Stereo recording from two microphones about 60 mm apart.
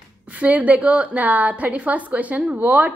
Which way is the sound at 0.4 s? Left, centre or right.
Right.